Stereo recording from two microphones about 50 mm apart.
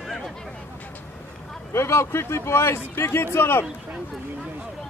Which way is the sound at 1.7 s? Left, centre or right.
Left.